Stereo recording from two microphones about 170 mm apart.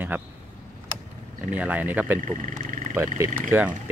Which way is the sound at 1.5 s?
10° right (ahead or behind).